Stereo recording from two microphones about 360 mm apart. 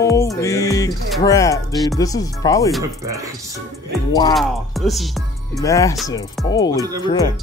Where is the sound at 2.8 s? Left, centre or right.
Centre.